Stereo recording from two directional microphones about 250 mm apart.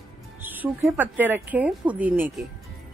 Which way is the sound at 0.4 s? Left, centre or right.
Centre.